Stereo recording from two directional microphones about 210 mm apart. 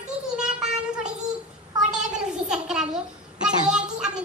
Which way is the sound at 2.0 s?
5° right (ahead or behind).